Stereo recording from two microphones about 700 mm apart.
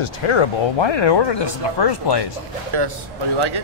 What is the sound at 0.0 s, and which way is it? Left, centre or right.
Speech, left.